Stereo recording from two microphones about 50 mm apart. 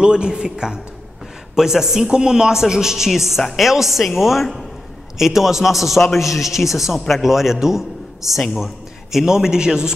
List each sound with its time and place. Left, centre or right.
0.0 s a man's voice: centre